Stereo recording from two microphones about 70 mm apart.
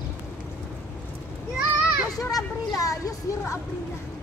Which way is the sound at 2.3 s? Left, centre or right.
Left.